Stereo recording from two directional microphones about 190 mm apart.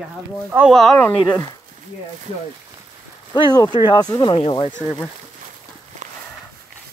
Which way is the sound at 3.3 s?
25° left (ahead or behind).